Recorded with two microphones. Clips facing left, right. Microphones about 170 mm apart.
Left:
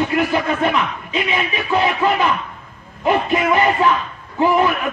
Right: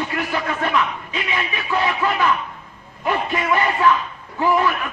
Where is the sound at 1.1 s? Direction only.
20° left (ahead or behind).